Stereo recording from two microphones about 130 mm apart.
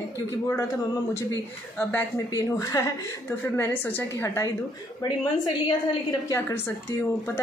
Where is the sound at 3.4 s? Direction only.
15° left (ahead or behind).